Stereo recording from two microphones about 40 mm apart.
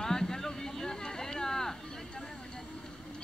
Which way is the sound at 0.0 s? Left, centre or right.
Centre.